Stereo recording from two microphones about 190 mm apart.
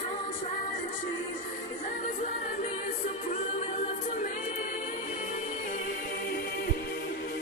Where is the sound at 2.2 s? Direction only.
45° left (ahead or behind).